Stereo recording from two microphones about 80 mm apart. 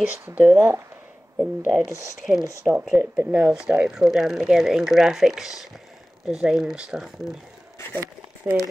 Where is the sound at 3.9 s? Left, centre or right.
Centre.